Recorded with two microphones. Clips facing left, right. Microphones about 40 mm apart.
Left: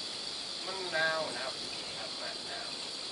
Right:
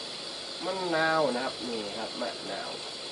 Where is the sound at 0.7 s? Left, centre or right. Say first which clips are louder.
Right 5 dB; right.